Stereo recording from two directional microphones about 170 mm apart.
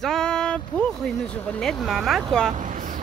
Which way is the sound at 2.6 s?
50° right (ahead or behind).